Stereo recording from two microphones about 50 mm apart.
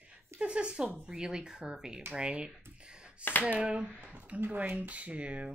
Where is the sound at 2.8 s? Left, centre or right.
Centre.